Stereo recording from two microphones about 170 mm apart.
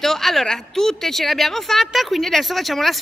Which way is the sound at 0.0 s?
Centre (ahead or behind).